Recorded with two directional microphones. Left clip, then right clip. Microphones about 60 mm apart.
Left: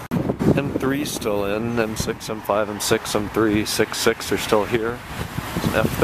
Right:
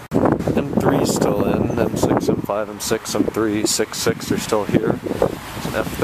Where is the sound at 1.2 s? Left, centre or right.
Right.